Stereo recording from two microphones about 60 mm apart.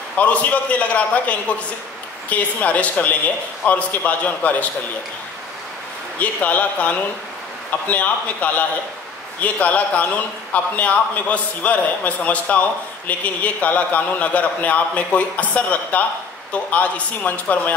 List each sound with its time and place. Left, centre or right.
0.2 s a man's voice: left
6.1 s a man's voice: left